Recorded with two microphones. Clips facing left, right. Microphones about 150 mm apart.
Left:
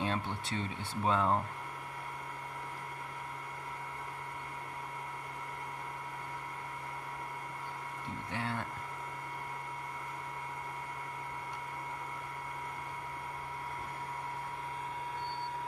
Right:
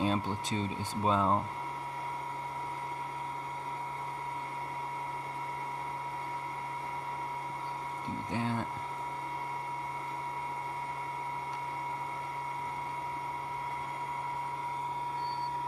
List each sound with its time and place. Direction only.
0.0 s speech: 20° right (ahead or behind)
8.3 s speech: 20° right (ahead or behind)